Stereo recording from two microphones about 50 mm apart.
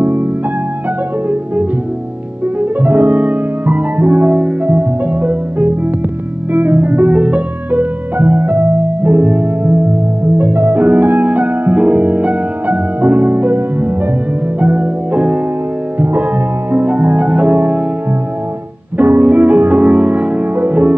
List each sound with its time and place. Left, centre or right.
0.0 s music: right
2.6 s music: right
14.6 s music: right
16.0 s music: right
18.9 s music: right